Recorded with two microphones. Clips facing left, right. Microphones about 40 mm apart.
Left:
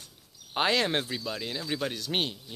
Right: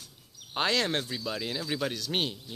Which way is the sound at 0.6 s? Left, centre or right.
Centre.